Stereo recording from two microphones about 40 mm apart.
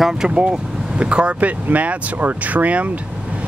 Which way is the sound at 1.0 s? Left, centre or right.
Right.